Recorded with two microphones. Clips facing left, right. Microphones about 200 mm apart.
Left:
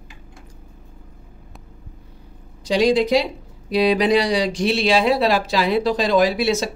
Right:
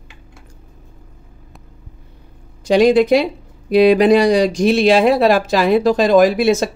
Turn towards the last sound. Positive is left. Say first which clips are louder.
# right 5 dB
turn(degrees=-50)  # may be behind; listen again after turning